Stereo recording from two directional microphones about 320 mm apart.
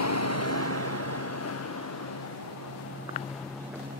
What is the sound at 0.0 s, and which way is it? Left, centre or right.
Vehicle, left.